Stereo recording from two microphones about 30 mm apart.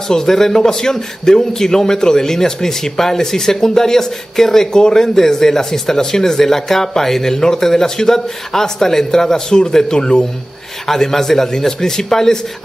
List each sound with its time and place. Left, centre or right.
0.1 s a man's voice: centre
7.3 s a man's voice: left
9.9 s a man's voice: left
10.9 s a man's voice: centre